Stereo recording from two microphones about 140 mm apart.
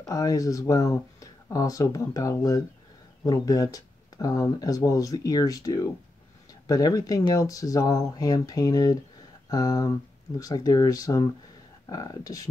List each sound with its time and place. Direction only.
0.1 s speech: 25° left (ahead or behind)